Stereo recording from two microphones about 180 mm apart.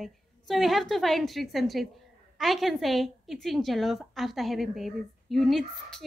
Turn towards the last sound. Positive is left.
turn(degrees=0)  # may be behind; listen again after turning